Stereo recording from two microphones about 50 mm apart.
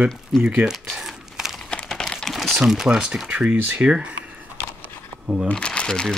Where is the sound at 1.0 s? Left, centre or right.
Centre.